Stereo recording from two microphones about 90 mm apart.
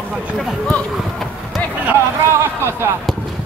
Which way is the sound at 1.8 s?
20° right (ahead or behind).